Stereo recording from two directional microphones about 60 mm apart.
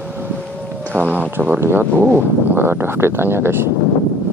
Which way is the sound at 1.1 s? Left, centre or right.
Right.